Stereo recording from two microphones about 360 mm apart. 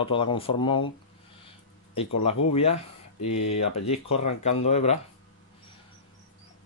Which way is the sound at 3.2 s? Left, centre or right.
Left.